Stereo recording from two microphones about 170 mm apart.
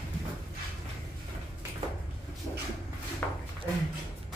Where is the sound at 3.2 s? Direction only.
10° left (ahead or behind).